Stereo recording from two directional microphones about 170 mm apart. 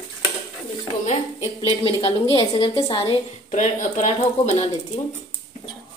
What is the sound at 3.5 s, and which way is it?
Speech, 45° left (ahead or behind).